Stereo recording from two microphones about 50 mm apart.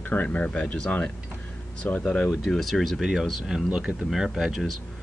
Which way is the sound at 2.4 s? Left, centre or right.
Centre.